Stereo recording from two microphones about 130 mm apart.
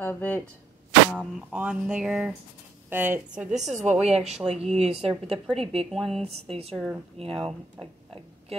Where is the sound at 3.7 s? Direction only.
60° right (ahead or behind); by 7.9 s 45° right (ahead or behind).